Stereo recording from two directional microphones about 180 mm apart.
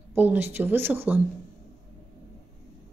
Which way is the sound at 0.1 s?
10° right (ahead or behind).